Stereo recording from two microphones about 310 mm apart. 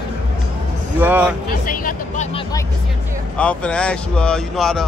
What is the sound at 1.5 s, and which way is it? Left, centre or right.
Speech, left.